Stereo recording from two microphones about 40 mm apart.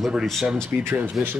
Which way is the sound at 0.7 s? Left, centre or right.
Right.